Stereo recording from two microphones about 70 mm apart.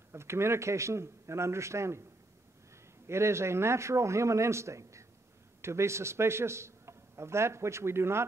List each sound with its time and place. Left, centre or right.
0.1 s a man's voice: right
3.1 s a man's voice: right